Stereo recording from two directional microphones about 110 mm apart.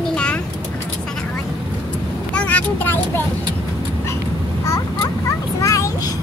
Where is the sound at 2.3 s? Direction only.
15° left (ahead or behind).